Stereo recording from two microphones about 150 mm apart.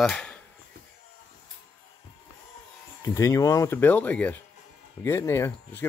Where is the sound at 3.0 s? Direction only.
20° left (ahead or behind).